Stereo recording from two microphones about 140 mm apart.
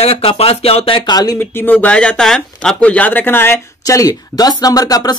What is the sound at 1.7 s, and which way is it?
Speech, 10° left (ahead or behind).